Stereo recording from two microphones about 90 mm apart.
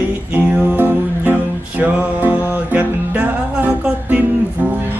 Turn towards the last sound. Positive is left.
turn(degrees=-15)  # may be behind; listen again after turning